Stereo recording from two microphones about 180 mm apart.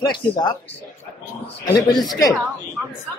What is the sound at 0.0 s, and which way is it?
Speech, 25° left (ahead or behind).